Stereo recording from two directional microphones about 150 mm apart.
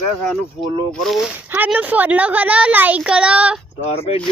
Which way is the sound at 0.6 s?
40° left (ahead or behind).